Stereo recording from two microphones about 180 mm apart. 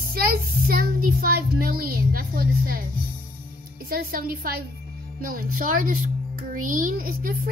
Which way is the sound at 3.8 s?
55° right (ahead or behind).